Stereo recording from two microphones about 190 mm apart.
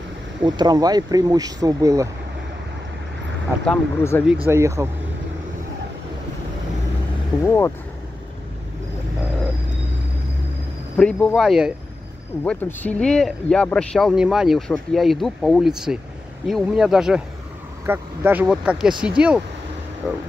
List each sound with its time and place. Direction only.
0.6 s speech: 20° right (ahead or behind)
3.6 s speech: 10° left (ahead or behind)
4.5 s speech: 15° right (ahead or behind)
7.4 s speech: 15° left (ahead or behind)
11.0 s speech: 5° left (ahead or behind)
12.4 s speech: 10° left (ahead or behind)